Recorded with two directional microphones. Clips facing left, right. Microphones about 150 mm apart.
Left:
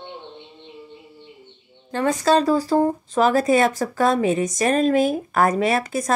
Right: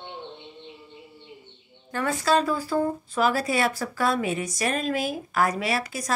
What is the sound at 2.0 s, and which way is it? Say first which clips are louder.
Speech: left 5 dB; 40° left (ahead or behind).